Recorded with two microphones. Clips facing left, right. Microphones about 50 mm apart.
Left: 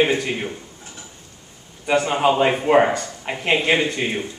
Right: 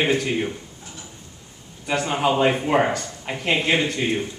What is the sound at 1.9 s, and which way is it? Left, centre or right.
A man's voice, centre.